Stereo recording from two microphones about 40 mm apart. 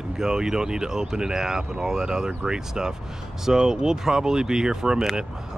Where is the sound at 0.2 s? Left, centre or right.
Centre.